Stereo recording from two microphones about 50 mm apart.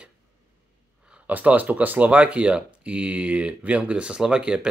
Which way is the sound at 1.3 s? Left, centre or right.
Right.